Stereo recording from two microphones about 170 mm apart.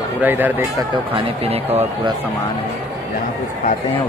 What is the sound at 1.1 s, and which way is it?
Speech, 35° right (ahead or behind).